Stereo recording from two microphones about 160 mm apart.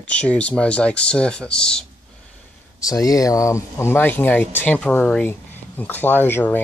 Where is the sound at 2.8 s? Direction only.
20° left (ahead or behind).